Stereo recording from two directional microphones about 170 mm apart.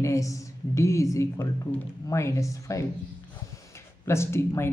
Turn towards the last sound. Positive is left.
turn(degrees=15)  # may be behind; listen again after turning